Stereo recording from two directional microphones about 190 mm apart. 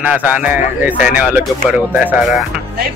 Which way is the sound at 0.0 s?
10° right (ahead or behind).